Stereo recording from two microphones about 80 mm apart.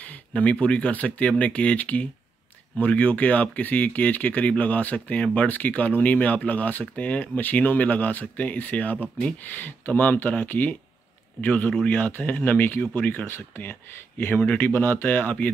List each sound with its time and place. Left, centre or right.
0.0 s speech: centre